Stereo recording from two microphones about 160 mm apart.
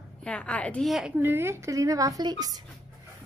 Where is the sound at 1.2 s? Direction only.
15° right (ahead or behind).